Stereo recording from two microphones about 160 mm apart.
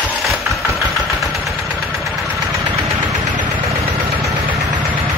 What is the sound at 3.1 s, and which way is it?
Engine, 25° right (ahead or behind).